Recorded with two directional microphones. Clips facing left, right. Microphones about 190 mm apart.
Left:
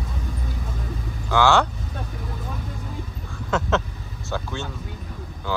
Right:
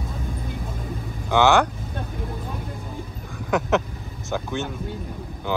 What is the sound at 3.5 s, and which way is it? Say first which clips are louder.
Speech: right 2 dB; 15° right (ahead or behind).